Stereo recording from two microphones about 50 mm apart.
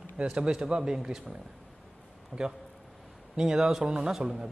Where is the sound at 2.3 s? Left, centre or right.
Left.